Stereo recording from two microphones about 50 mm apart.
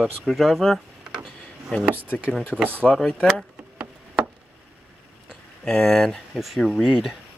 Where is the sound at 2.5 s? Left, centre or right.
Right.